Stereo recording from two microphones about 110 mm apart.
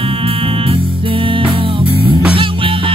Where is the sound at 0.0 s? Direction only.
55° right (ahead or behind).